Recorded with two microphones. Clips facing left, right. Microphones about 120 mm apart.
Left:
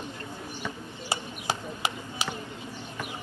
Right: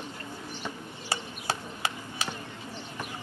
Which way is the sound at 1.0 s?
15° left (ahead or behind).